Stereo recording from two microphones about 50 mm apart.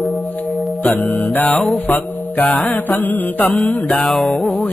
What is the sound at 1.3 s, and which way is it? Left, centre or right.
Speech, left.